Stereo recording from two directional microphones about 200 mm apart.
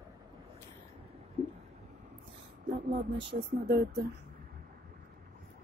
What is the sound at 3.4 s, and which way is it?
Speech, 55° right (ahead or behind).